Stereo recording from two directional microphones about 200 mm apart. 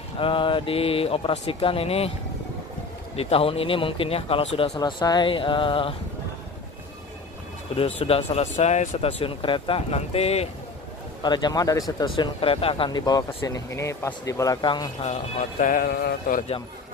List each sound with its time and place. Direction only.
0.2 s speech: 25° left (ahead or behind)
3.2 s speech: 30° left (ahead or behind)
7.7 s speech: 30° left (ahead or behind)
15.6 s a sound: 45° left (ahead or behind)